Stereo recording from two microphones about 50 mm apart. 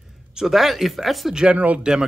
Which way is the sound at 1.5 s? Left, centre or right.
Right.